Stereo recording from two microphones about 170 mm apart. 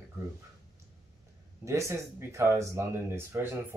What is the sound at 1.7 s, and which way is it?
Speech, 15° right (ahead or behind).